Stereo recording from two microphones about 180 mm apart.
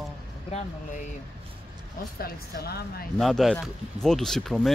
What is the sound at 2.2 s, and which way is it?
Speech, 60° left (ahead or behind).